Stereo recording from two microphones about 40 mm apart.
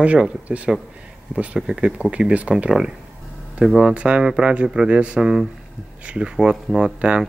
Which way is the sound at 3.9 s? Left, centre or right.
Right.